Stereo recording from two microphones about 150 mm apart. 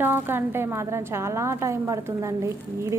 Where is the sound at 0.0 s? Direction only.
15° right (ahead or behind).